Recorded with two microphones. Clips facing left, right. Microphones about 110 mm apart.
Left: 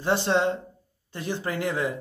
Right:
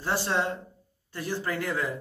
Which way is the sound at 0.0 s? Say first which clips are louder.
Left 5 dB; 20° left (ahead or behind).